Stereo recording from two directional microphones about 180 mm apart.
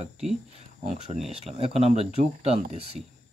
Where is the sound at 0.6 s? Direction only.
40° right (ahead or behind).